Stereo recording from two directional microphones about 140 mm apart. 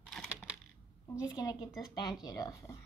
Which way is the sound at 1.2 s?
30° left (ahead or behind).